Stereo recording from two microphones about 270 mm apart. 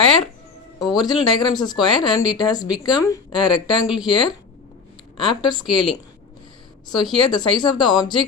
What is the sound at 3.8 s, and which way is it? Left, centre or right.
Speech, centre.